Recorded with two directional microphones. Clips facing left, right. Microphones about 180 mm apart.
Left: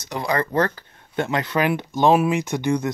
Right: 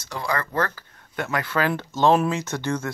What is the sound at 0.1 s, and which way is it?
Speech, 20° left (ahead or behind).